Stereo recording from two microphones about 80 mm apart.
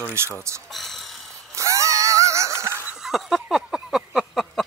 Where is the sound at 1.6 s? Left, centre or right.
Right.